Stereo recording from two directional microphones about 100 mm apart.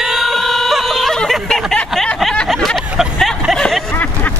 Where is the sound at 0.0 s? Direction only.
Centre (ahead or behind).